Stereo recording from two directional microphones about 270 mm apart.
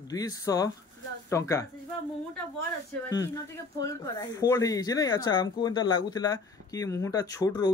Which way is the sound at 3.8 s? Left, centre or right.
Centre.